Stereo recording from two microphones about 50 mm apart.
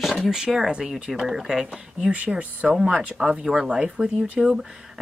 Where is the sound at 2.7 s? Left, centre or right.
Centre.